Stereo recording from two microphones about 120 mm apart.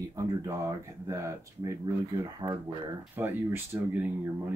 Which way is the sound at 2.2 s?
35° right (ahead or behind).